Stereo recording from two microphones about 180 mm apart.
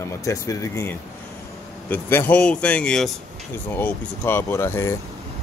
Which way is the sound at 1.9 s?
10° left (ahead or behind).